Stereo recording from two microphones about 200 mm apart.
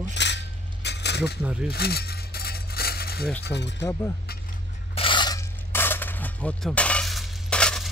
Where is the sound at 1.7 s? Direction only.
50° left (ahead or behind).